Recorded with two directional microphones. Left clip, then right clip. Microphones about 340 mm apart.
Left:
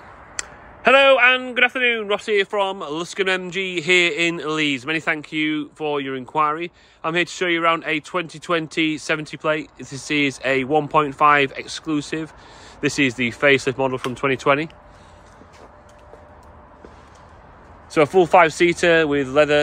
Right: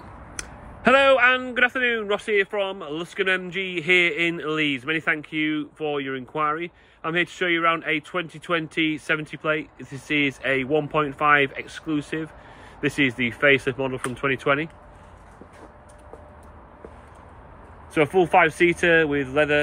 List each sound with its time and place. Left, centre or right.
0.4 s a man's voice: centre
17.9 s a man's voice: centre